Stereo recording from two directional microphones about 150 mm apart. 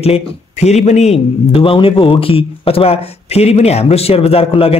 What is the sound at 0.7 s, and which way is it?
A man's voice, 45° left (ahead or behind).